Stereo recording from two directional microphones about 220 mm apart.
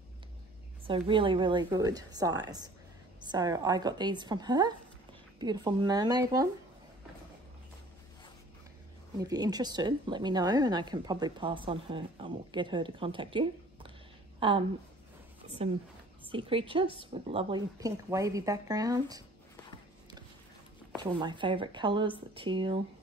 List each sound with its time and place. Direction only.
0.8 s a woman's voice: 20° right (ahead or behind)
9.2 s a woman's voice: 15° right (ahead or behind)
16.3 s a woman's voice: 25° right (ahead or behind)
20.9 s a woman's voice: 20° right (ahead or behind)